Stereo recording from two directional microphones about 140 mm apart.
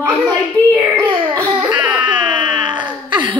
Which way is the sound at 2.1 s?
35° right (ahead or behind).